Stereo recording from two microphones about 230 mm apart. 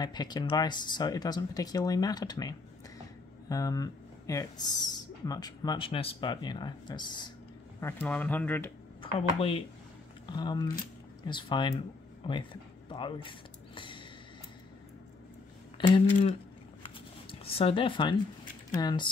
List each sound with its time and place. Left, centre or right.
0.0 s speech: centre
7.8 s speech: centre
9.0 s speech: left
13.7 s a sound: left
15.9 s speech: left
16.8 s shuffling cards: left
18.7 s speech: centre